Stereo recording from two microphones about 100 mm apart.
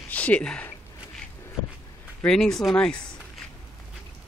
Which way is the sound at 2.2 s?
5° left (ahead or behind).